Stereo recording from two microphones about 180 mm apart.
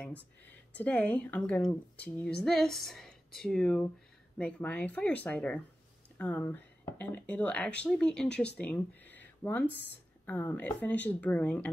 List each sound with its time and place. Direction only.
0.7 s speech: 10° left (ahead or behind)